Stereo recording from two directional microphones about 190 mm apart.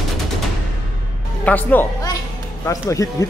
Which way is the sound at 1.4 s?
10° left (ahead or behind).